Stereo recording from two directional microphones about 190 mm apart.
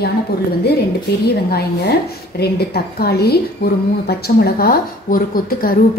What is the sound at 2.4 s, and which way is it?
A woman's voice, 55° left (ahead or behind).